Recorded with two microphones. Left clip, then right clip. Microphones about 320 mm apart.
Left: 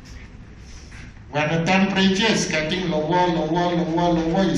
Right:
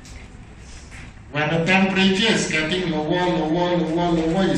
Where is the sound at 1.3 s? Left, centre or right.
Centre.